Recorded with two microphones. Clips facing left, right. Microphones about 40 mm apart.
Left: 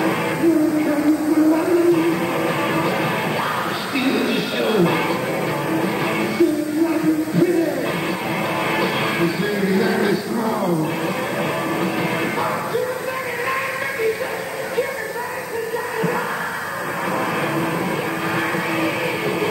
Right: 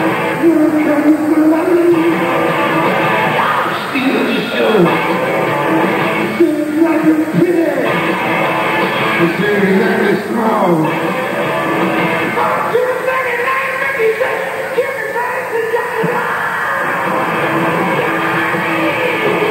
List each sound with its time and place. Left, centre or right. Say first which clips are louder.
0.0 s music: right 6 dB; right
4.0 s music: right 5 dB; right
9.2 s music: right 8 dB; right